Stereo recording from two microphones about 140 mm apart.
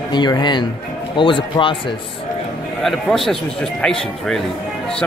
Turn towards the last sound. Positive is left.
turn(degrees=5)  # may be behind; listen again after turning